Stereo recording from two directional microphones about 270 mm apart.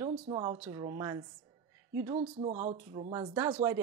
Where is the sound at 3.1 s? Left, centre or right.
Centre.